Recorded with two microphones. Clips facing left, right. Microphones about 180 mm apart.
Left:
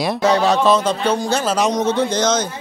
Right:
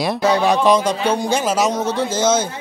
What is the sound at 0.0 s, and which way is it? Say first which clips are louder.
Speech: even; centre (ahead or behind).